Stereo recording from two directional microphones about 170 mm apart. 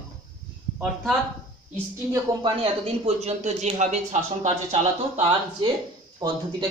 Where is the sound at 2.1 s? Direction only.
25° right (ahead or behind).